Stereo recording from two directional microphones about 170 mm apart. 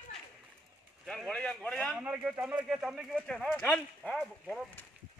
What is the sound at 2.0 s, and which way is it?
Speech, 5° right (ahead or behind).